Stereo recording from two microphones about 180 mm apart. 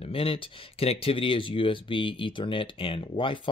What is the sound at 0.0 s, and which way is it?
Speech, 30° left (ahead or behind).